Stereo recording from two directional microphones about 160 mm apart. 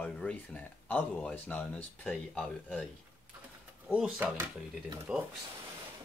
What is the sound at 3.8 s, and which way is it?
Speech, 5° right (ahead or behind).